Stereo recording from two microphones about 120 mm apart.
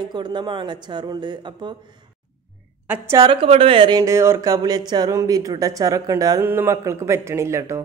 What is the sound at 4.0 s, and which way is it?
A woman's voice, 25° right (ahead or behind).